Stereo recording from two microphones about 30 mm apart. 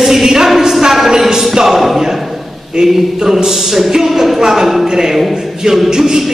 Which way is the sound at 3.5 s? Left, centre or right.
Centre.